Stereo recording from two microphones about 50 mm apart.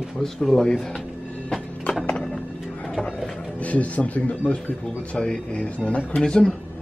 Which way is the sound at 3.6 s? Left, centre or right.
Left.